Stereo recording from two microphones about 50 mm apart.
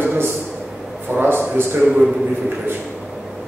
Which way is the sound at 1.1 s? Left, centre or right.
Right.